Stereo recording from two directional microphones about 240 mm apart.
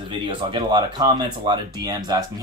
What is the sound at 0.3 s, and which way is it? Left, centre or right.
Speech, centre.